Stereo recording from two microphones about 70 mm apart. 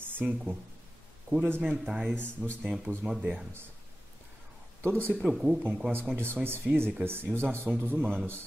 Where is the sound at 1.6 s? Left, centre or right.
Centre.